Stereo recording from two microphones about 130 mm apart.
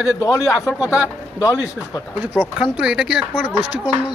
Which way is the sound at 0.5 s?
5° right (ahead or behind).